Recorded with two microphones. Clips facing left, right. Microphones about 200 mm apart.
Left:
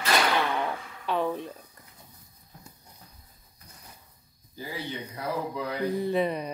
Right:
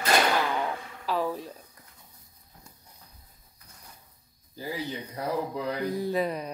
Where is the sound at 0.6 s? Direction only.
Centre (ahead or behind).